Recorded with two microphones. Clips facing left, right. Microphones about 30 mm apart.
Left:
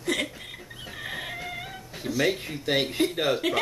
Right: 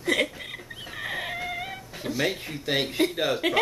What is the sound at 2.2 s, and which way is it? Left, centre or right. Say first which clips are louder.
Speech: left 3 dB; centre.